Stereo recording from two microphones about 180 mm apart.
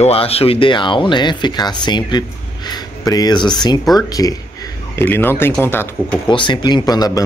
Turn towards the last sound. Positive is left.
turn(degrees=20)  # may be behind; listen again after turning